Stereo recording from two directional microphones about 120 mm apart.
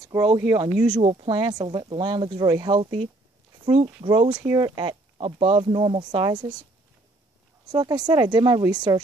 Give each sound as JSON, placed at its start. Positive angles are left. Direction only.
{"t": 0.0, "sound": "speech", "side_deg": -30}
{"t": 2.7, "sound": "speech", "side_deg": -55}
{"t": 5.1, "sound": "speech", "side_deg": -50}
{"t": 7.7, "sound": "speech", "side_deg": -35}